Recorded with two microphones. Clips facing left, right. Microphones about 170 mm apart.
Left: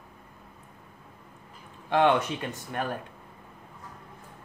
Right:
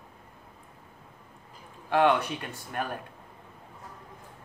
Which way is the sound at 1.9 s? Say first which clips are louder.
Left 1 dB; 20° left (ahead or behind).